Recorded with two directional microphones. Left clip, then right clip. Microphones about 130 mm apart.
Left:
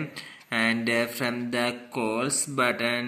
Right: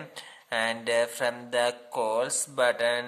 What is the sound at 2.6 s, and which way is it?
Speech, 40° right (ahead or behind).